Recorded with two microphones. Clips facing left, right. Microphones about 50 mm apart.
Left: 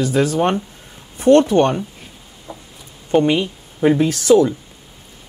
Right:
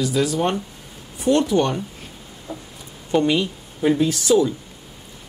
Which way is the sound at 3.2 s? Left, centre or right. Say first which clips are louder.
Left 3 dB; left.